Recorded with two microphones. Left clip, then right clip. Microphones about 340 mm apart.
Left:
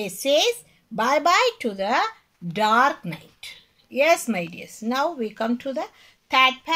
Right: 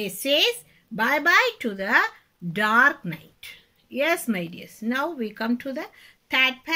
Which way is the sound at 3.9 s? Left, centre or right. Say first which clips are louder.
Left 5 dB; left.